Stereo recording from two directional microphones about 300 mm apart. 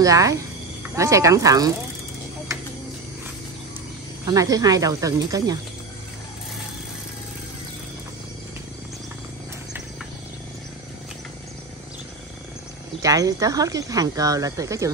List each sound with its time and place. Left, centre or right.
0.0 s speech: centre
4.3 s speech: centre
13.0 s speech: centre